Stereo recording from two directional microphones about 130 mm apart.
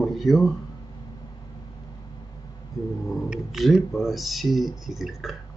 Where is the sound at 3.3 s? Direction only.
5° right (ahead or behind).